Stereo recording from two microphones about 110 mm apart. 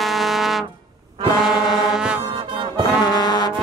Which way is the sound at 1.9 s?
5° right (ahead or behind).